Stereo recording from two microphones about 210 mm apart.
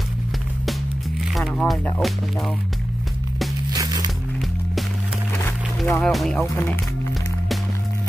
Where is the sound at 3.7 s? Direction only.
15° right (ahead or behind).